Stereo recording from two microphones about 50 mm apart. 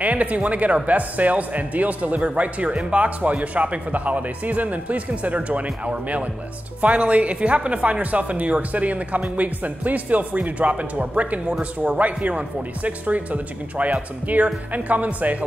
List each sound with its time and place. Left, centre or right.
0.0 s speech: right